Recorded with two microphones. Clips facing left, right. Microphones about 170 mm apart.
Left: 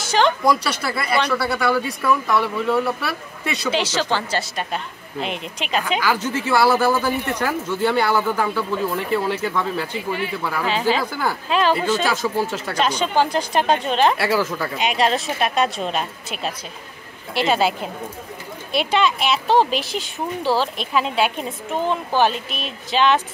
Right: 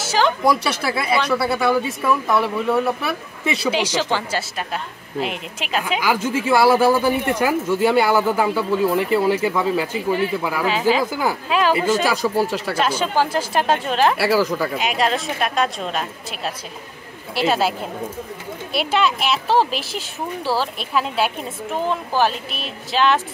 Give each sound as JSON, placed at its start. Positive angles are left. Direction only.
{"t": 0.0, "sound": "a sound", "side_deg": -5}
{"t": 0.5, "sound": "speech", "side_deg": 0}
{"t": 1.6, "sound": "speech", "side_deg": -20}